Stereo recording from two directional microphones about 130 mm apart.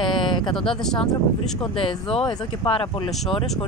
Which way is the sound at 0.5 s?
5° left (ahead or behind).